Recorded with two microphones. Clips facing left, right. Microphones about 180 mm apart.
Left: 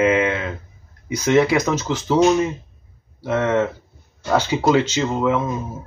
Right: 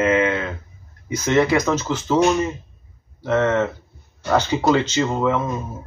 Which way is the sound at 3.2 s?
10° left (ahead or behind).